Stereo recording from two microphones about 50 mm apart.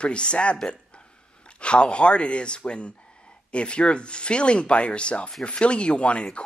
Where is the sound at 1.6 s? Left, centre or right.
Left.